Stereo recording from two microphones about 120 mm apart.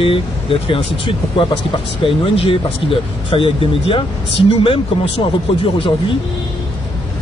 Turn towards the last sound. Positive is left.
turn(degrees=50)  # may be behind; listen again after turning